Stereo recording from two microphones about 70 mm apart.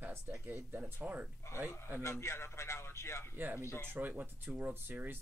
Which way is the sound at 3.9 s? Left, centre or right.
Right.